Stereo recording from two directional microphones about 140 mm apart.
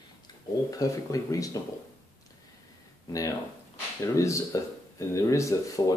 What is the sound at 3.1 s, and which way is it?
Speech, 25° left (ahead or behind).